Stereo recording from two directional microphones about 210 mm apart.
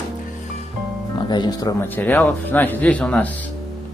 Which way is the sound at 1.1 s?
20° left (ahead or behind).